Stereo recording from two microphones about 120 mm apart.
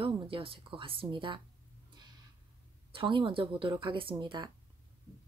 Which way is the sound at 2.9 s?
45° right (ahead or behind).